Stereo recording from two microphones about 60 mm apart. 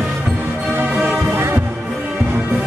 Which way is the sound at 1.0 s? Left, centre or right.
Right.